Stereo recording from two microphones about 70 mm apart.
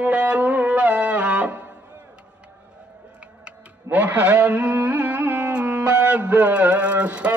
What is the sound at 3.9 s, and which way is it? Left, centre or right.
Music, right.